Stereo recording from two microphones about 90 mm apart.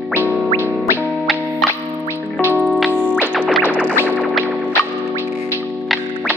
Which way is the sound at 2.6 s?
Centre (ahead or behind).